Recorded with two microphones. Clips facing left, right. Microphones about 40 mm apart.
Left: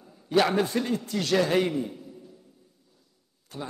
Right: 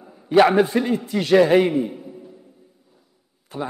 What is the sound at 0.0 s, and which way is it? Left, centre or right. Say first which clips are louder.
A man's voice: right 8 dB; right.